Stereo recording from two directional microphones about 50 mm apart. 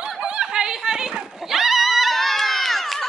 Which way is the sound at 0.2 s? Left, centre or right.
Centre.